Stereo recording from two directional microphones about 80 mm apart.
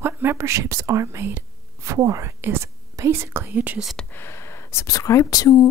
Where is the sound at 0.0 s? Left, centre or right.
Right.